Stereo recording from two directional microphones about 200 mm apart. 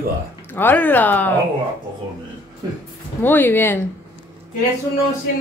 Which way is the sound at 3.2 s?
10° left (ahead or behind).